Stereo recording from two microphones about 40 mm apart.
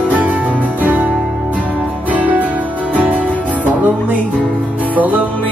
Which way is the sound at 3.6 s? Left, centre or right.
Right.